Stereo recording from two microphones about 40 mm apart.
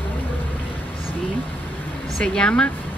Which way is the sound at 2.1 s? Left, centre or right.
Left.